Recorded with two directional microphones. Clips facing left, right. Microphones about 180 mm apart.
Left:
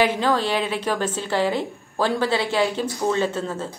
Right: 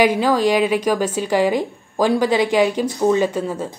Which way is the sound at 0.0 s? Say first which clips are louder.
Right 5 dB; 10° right (ahead or behind).